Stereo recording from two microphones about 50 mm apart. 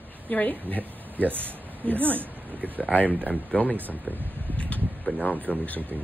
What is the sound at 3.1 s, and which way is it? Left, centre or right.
Speech, right.